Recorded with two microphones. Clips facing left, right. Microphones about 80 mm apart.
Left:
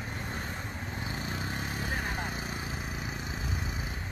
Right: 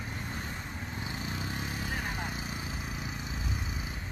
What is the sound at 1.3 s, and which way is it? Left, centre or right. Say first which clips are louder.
Vehicle: left 1 dB; left.